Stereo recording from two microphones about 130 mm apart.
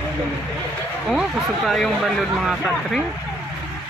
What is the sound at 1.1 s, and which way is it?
Speech, centre (ahead or behind).